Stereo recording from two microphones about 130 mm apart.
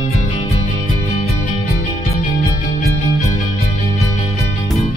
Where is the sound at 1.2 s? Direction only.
70° left (ahead or behind).